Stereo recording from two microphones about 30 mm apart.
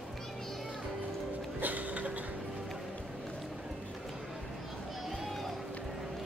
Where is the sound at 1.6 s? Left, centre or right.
Right.